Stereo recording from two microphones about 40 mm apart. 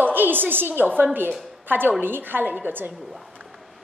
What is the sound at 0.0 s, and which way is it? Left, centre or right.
A woman's voice, right.